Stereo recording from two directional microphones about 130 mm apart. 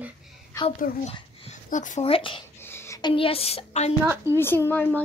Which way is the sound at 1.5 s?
75° left (ahead or behind).